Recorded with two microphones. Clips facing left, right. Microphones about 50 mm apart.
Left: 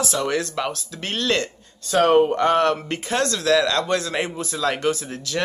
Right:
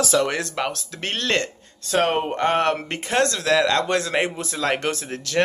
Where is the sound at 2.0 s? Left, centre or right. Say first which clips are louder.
Left 5 dB; right.